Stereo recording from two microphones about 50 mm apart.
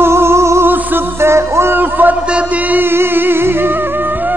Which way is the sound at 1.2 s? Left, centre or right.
Right.